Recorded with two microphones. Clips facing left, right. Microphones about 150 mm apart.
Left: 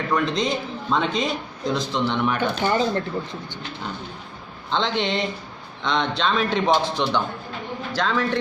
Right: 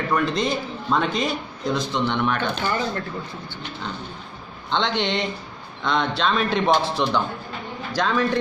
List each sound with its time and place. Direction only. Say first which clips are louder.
0.1 s speech: even; 5° right (ahead or behind)
2.6 s speech: left 4 dB; 25° left (ahead or behind)
4.6 s a man's voice: even; centre (ahead or behind)